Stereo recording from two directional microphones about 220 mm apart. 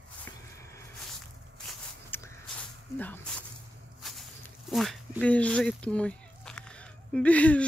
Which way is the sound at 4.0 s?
Centre (ahead or behind).